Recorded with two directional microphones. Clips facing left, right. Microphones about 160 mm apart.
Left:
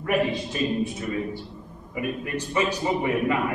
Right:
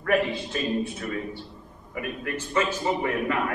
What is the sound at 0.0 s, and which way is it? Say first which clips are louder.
A man's voice: even; 15° left (ahead or behind).